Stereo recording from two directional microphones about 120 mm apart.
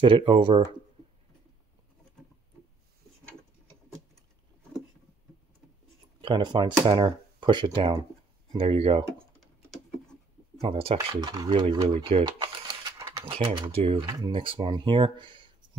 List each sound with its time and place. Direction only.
0.0 s speech: 45° right (ahead or behind)
6.2 s speech: 40° right (ahead or behind)
10.6 s speech: 55° right (ahead or behind)
11.2 s speech: 40° right (ahead or behind)
13.3 s speech: 50° right (ahead or behind)